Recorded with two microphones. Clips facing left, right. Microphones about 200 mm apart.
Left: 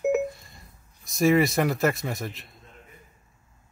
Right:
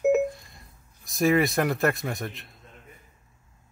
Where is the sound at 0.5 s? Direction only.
Centre (ahead or behind).